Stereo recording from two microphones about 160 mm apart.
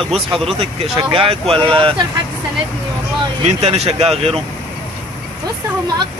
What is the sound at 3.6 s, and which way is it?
Speech, 40° right (ahead or behind).